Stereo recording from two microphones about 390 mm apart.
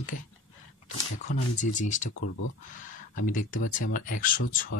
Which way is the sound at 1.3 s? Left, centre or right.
Centre.